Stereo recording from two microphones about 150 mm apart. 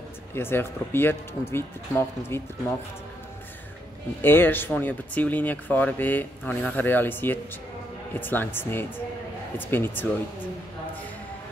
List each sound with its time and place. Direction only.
0.3 s speech: 15° left (ahead or behind)
4.2 s speech: 15° left (ahead or behind)